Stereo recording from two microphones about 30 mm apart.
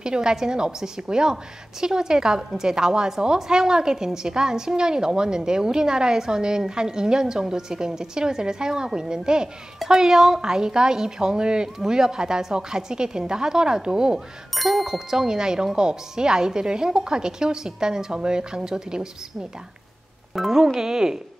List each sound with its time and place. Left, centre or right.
0.0 s a woman's voice: right
14.7 s a woman's voice: centre
20.5 s a woman's voice: right